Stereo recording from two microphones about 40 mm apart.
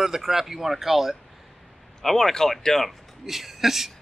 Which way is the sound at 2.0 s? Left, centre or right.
Centre.